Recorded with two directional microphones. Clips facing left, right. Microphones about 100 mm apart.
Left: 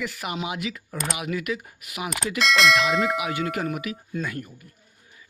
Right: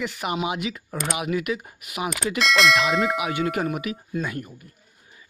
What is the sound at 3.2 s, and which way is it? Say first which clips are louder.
Speech: right 2 dB; 25° right (ahead or behind).